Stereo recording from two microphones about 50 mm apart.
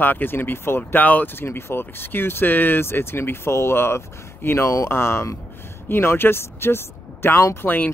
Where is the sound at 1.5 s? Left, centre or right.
Left.